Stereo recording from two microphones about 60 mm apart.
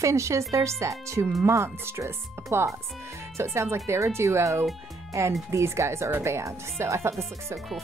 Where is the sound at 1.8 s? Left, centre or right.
Right.